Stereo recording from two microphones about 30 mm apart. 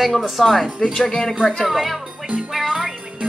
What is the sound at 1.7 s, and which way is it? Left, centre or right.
Music, centre.